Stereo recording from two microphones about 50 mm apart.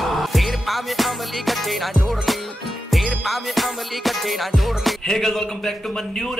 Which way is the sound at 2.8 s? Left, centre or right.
Centre.